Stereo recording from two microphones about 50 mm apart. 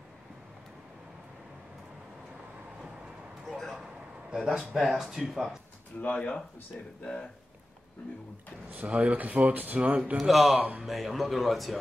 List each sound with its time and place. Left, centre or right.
3.4 s a sound: centre
3.8 s a sound: centre
4.5 s speech: centre
5.9 s speech: left
8.7 s speech: right
10.1 s speech: centre